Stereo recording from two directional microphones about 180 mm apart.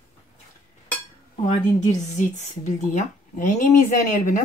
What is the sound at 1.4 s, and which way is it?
Speech, 40° left (ahead or behind).